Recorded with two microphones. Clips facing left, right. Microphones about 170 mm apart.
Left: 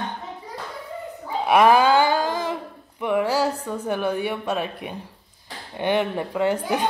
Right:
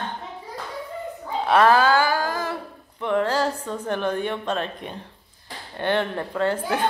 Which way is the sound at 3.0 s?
10° left (ahead or behind).